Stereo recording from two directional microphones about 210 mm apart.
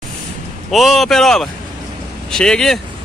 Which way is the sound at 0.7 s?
Centre (ahead or behind).